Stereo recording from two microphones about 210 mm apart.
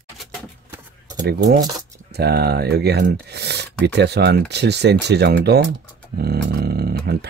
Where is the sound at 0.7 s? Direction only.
20° right (ahead or behind).